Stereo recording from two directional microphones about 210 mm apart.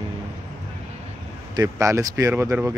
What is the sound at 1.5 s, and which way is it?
Speech, 15° right (ahead or behind).